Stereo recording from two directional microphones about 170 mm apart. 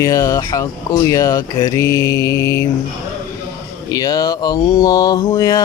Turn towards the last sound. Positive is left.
turn(degrees=20)  # may be behind; listen again after turning